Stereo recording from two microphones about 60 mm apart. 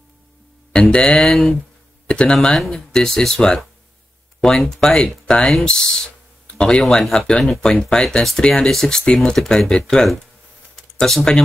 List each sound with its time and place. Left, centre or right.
0.7 s speech: centre
2.0 s a sound: centre
2.3 s speech: centre